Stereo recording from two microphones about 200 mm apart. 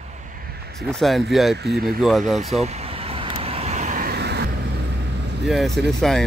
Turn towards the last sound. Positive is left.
turn(degrees=0)  # may be behind; listen again after turning